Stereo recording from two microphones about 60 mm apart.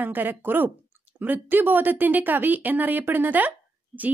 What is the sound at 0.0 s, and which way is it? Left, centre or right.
A woman's voice, right.